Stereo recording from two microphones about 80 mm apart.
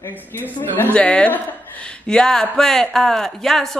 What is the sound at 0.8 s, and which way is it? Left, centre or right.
A woman's voice, centre.